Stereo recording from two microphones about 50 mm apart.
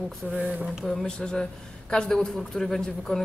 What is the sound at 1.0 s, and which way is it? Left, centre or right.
A man's voice, centre.